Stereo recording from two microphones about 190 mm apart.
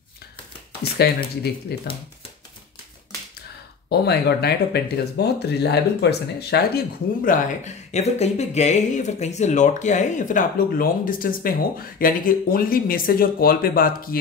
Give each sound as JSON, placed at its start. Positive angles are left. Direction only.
{"t": 0.9, "sound": "speech", "side_deg": 55}
{"t": 3.9, "sound": "speech", "side_deg": 60}